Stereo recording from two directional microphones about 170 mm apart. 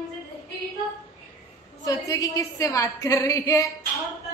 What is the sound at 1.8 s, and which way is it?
A woman's voice, 20° left (ahead or behind).